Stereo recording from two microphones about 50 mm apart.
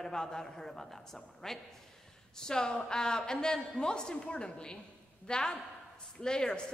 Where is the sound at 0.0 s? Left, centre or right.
Centre.